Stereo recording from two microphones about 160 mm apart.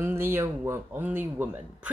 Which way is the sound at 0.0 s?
15° right (ahead or behind).